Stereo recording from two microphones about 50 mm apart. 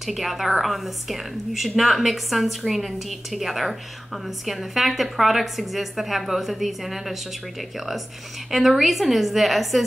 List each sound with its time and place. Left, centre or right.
0.0 s a woman's voice: centre
8.5 s a woman's voice: centre